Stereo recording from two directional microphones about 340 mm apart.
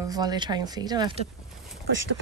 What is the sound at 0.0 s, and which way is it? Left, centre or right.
Speech, centre.